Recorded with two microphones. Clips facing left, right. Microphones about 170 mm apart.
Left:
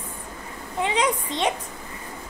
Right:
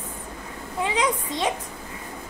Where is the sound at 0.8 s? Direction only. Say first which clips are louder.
Left 1 dB; 25° left (ahead or behind).